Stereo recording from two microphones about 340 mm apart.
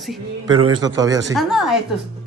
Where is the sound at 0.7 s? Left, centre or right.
Centre.